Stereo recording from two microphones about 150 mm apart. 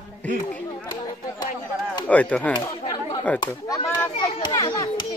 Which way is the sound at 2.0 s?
10° left (ahead or behind).